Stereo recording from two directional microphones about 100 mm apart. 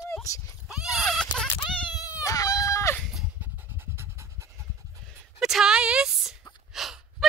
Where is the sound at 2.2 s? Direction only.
35° left (ahead or behind).